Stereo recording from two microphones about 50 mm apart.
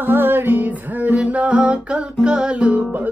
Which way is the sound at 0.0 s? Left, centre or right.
Right.